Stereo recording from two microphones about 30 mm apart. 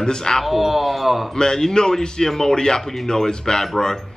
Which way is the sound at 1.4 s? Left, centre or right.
Left.